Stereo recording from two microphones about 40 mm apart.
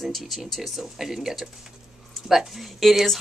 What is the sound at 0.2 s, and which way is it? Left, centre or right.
Speech, centre.